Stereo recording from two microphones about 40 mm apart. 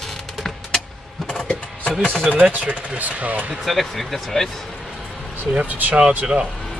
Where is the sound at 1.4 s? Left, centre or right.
Left.